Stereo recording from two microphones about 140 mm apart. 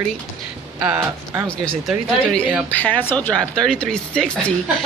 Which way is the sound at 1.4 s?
5° left (ahead or behind).